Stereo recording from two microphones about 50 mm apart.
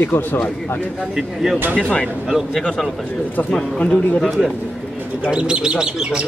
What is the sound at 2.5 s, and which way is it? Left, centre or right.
Speech, centre.